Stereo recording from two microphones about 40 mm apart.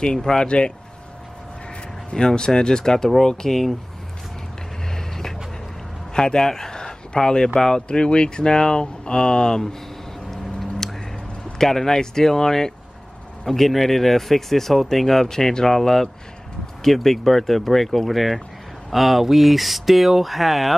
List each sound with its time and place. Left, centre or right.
0.0 s speech: centre
2.0 s speech: left
4.9 s vehicle: centre
6.1 s speech: centre
10.3 s a sound: centre
11.5 s speech: centre